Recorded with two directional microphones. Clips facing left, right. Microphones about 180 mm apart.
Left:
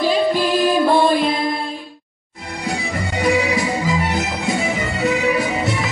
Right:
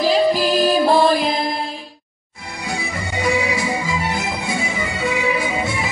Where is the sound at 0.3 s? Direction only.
40° right (ahead or behind).